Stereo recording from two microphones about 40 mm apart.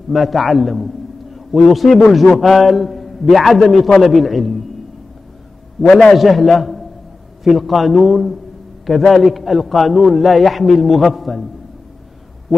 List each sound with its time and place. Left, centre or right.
0.1 s a man's voice: centre
5.9 s a man's voice: left
6.1 s a man's voice: centre